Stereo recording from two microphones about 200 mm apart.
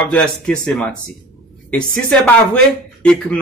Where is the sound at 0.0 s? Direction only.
5° left (ahead or behind).